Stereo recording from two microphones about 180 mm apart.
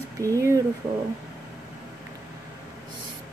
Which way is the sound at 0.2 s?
15° right (ahead or behind).